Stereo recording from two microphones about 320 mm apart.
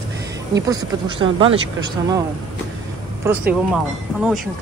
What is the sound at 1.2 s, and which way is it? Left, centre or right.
Speech, centre.